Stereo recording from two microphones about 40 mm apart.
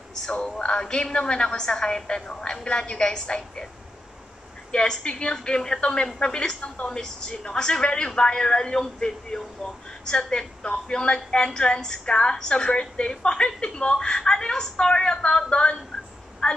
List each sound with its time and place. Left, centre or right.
0.1 s speech: centre
4.7 s speech: left